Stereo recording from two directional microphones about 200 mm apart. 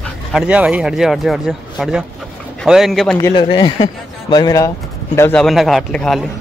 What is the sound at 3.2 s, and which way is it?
A man's voice, 25° left (ahead or behind).